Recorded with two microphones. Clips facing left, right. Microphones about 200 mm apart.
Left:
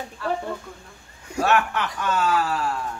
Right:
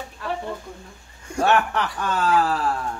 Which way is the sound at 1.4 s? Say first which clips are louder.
Right 1 dB; 30° right (ahead or behind).